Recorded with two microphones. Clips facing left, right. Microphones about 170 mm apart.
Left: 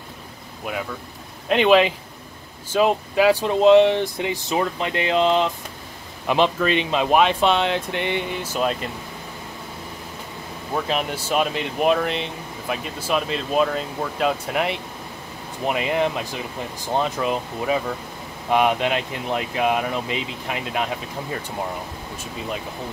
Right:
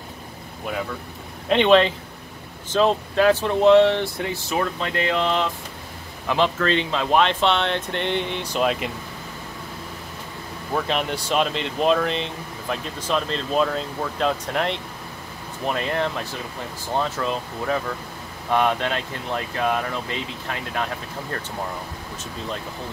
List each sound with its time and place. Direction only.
0.7 s speech: 5° left (ahead or behind)
10.7 s speech: 5° left (ahead or behind)